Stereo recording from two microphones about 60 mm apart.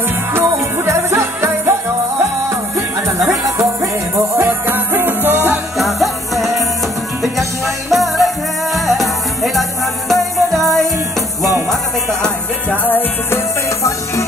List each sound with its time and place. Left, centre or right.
0.3 s music: right
3.4 s music: right
5.8 s music: centre
12.6 s music: left
13.3 s music: left